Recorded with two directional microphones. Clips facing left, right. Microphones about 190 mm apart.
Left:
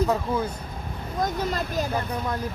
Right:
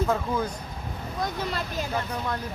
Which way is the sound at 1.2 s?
45° left (ahead or behind).